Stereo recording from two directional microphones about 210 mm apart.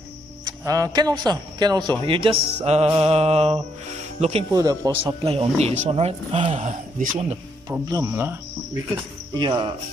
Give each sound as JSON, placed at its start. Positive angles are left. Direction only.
{"t": 0.5, "sound": "speech", "side_deg": -15}
{"t": 2.6, "sound": "music", "side_deg": -30}
{"t": 2.9, "sound": "speech", "side_deg": -30}
{"t": 4.5, "sound": "speech", "side_deg": -15}
{"t": 7.7, "sound": "speech", "side_deg": -15}
{"t": 9.3, "sound": "speech", "side_deg": -20}